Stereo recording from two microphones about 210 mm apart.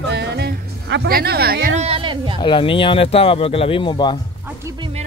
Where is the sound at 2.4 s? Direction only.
25° left (ahead or behind).